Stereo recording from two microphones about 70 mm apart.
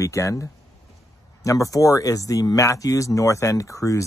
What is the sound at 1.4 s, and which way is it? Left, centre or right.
Speech, left.